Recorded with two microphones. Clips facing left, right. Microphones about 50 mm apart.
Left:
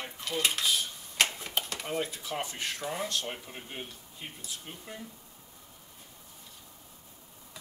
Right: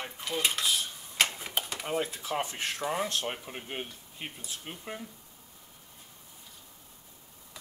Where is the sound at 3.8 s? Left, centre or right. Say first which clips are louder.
Right 3 dB; right.